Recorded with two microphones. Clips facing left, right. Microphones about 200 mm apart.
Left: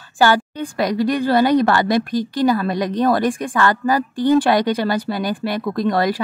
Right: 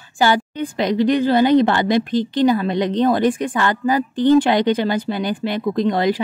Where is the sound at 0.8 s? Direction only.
20° right (ahead or behind).